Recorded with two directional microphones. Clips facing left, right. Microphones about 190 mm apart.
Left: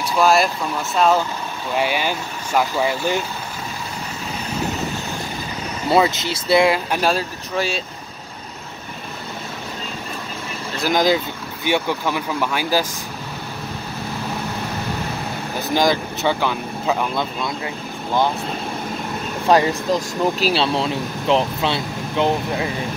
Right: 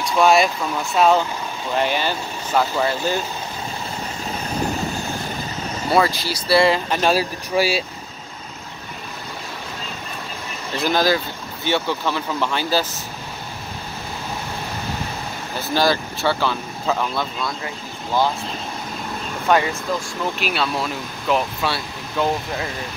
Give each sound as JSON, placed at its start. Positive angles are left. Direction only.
{"t": 0.0, "sound": "speech", "side_deg": 0}
{"t": 1.8, "sound": "speech", "side_deg": 10}
{"t": 5.9, "sound": "speech", "side_deg": 20}
{"t": 6.6, "sound": "speech", "side_deg": 10}
{"t": 7.1, "sound": "speech", "side_deg": -10}
{"t": 10.9, "sound": "speech", "side_deg": 20}
{"t": 15.7, "sound": "speech", "side_deg": 15}
{"t": 19.4, "sound": "speech", "side_deg": 35}